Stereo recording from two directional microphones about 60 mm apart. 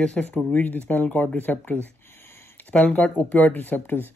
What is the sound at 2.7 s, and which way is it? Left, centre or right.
Speech, left.